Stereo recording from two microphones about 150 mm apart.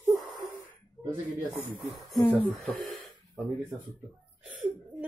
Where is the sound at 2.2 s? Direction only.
10° left (ahead or behind).